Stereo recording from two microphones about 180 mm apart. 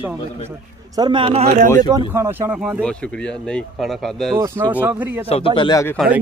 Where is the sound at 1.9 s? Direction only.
15° right (ahead or behind).